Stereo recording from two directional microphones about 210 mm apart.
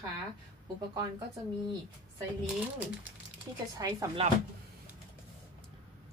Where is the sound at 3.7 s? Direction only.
15° right (ahead or behind).